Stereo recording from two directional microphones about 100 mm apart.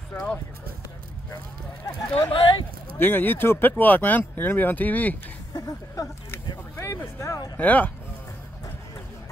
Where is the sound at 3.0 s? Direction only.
20° left (ahead or behind).